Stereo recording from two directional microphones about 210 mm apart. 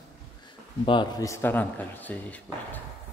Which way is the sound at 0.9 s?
20° left (ahead or behind).